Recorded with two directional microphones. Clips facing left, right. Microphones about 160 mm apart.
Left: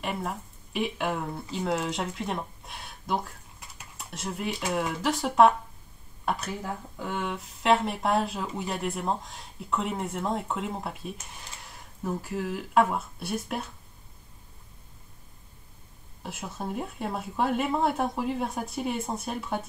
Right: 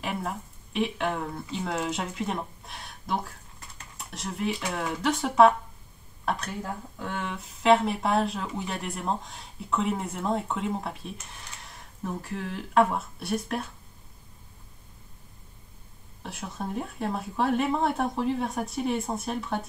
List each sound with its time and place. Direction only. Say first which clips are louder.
0.0 s speech: even; centre (ahead or behind)
16.2 s speech: right 1 dB; 5° left (ahead or behind)